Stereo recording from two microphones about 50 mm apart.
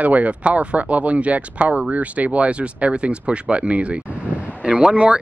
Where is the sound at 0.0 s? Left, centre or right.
Right.